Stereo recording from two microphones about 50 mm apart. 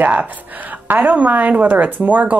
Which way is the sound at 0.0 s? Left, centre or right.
Right.